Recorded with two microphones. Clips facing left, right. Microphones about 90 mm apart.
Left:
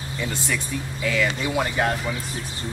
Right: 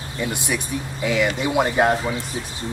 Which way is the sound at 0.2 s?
15° right (ahead or behind).